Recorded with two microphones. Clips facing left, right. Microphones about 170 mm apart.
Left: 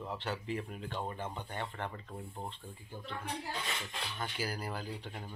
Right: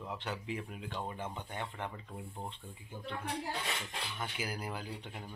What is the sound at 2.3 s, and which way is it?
Speech, 5° left (ahead or behind).